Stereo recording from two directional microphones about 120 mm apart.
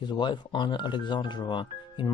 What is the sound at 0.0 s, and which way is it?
Speech, 40° left (ahead or behind).